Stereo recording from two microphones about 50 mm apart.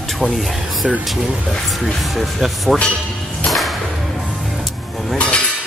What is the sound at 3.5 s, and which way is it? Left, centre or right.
Whip, centre.